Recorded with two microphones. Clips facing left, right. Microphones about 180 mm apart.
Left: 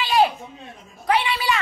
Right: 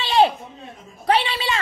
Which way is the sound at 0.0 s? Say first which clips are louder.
Right 2 dB; 25° right (ahead or behind).